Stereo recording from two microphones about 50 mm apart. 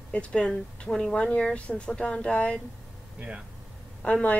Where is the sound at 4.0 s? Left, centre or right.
Left.